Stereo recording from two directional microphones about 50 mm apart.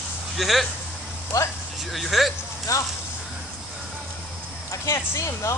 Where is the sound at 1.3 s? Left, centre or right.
Left.